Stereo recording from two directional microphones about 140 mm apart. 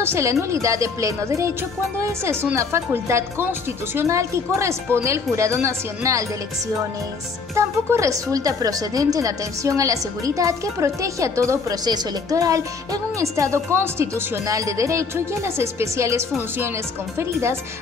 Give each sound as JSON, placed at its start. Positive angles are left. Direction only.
{"t": 0.0, "sound": "speech", "side_deg": -20}
{"t": 7.5, "sound": "speech", "side_deg": -20}